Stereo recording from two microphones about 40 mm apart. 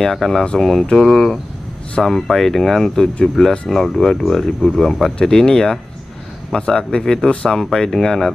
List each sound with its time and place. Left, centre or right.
0.0 s speech: centre